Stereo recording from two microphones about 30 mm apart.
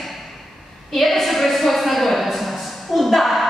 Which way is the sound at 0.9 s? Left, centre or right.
Centre.